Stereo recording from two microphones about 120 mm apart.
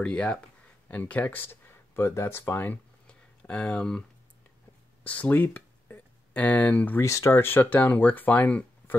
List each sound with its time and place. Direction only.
0.0 s speech: 10° left (ahead or behind)
5.0 s speech: 15° left (ahead or behind)
7.0 s speech: 25° left (ahead or behind)